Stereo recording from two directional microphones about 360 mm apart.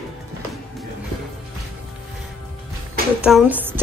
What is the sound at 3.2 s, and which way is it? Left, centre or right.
Speech, centre.